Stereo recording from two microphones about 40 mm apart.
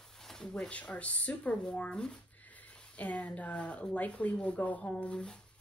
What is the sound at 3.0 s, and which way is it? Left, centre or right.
Speech, left.